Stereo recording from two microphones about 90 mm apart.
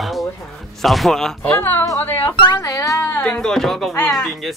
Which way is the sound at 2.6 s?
40° left (ahead or behind).